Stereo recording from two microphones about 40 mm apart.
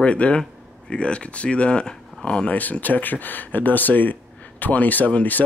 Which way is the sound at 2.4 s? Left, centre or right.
Left.